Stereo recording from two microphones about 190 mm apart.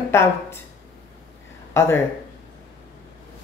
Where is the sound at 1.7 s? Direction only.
10° left (ahead or behind).